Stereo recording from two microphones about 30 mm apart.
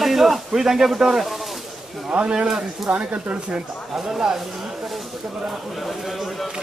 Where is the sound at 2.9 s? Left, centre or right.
Right.